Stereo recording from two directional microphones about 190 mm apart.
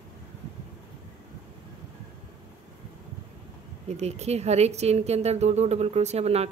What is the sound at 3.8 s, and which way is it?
A woman's voice, 35° right (ahead or behind).